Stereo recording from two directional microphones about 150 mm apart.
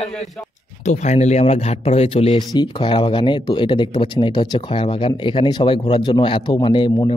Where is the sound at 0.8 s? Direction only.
50° left (ahead or behind).